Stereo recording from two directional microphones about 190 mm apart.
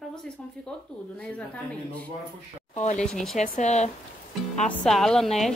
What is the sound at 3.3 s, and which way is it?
Speech, 40° left (ahead or behind).